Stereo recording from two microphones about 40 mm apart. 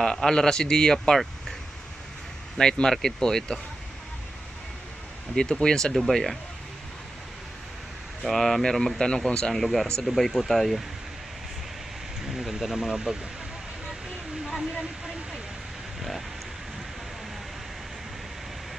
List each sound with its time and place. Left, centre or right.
0.0 s speech: centre
2.5 s speech: centre
5.3 s speech: centre
5.9 s speech: centre
8.2 s speech: centre
12.3 s speech: centre